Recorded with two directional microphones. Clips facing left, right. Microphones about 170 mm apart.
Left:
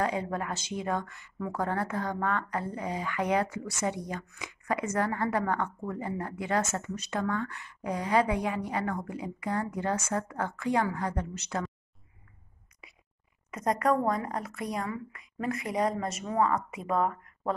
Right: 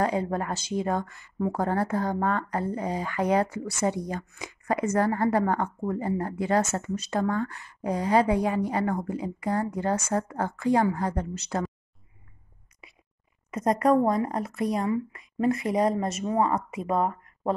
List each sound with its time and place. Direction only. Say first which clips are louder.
0.0 s speech: right 4 dB; 35° right (ahead or behind)
13.5 s speech: right 5 dB; 25° right (ahead or behind)